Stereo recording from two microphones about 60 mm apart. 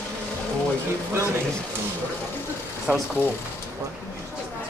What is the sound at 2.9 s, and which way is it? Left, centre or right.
Speech, centre.